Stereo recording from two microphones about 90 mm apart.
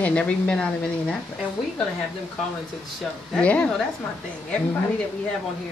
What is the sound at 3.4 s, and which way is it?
Speech, 15° left (ahead or behind).